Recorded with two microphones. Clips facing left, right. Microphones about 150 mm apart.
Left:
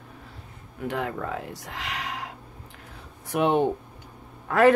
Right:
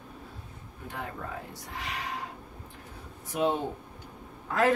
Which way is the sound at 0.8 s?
80° left.